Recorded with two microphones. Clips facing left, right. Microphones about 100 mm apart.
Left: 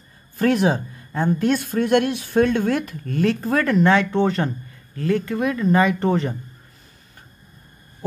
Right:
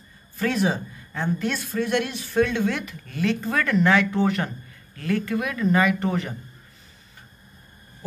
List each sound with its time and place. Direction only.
0.4 s speech: 50° left (ahead or behind); by 6.3 s 30° left (ahead or behind)